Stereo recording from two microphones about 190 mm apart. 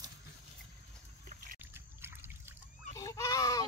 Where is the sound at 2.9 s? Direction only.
15° left (ahead or behind).